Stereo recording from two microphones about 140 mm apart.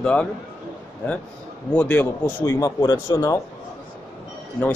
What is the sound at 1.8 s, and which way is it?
A man's voice, 15° left (ahead or behind).